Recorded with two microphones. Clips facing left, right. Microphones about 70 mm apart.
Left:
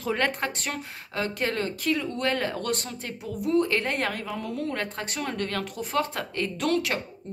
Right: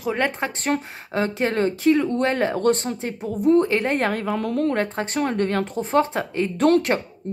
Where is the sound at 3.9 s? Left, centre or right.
Right.